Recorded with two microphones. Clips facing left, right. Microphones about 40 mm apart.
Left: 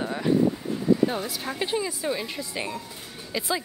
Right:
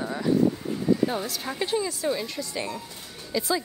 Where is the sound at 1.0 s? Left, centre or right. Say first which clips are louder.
Left 1 dB; centre.